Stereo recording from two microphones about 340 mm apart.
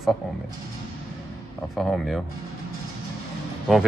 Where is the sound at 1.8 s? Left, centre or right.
Centre.